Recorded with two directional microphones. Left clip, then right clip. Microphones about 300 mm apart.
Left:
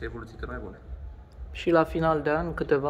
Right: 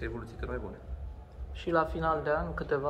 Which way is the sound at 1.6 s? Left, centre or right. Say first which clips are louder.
Left 6 dB; left.